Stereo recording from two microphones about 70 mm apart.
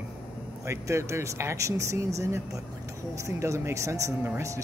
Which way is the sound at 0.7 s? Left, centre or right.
Right.